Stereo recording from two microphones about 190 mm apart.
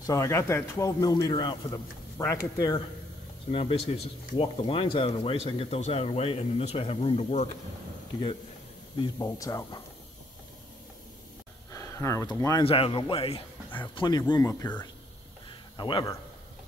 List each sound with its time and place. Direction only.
0.0 s a man's voice: 15° left (ahead or behind)
3.5 s speech: 30° left (ahead or behind)
9.0 s a man's voice: 20° left (ahead or behind)
11.7 s speech: 15° left (ahead or behind)
12.6 s a man's voice: 30° left (ahead or behind); by 14.8 s 15° left (ahead or behind)
15.8 s speech: 25° left (ahead or behind)